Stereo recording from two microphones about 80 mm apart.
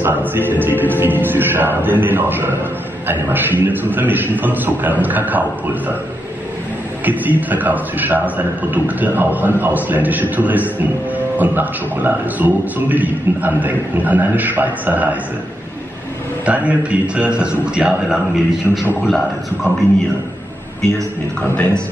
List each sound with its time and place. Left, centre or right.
0.0 s a man's voice: right
7.1 s a man's voice: right
16.4 s a man's voice: centre
18.7 s a man's voice: centre
19.0 s a man's voice: centre